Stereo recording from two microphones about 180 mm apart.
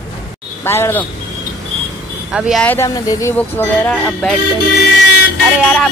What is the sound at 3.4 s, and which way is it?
Speech, 10° left (ahead or behind).